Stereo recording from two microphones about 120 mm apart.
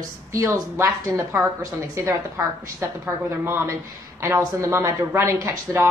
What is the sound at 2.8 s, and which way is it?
Speech, 20° right (ahead or behind).